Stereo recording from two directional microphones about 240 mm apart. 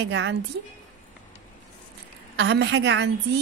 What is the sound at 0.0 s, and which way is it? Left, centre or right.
Speech, right.